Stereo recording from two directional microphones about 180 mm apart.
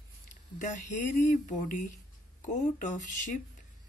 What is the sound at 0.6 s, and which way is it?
Speech, 45° left (ahead or behind).